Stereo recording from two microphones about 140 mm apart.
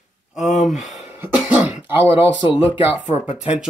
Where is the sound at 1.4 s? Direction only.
10° right (ahead or behind).